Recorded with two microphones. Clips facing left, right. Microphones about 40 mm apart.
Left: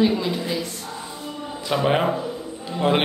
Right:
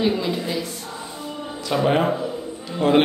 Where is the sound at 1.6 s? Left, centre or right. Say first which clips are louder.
Right 1 dB; centre.